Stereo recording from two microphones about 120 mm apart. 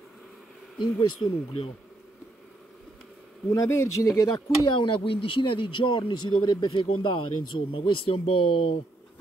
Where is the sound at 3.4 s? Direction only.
20° left (ahead or behind).